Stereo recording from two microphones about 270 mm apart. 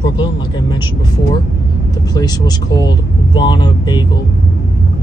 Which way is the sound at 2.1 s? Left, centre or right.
Centre.